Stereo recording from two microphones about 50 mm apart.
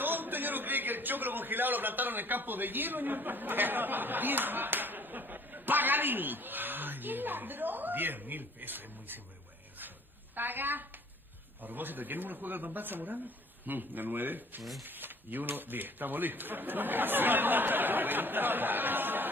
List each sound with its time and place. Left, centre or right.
0.0 s a man's voice: right
9.8 s a sound: right
11.6 s speech: right